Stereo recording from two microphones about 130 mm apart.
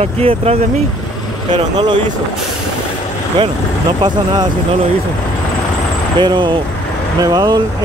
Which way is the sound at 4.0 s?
35° right (ahead or behind).